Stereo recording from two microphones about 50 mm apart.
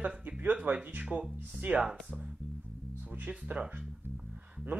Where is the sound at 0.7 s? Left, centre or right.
Right.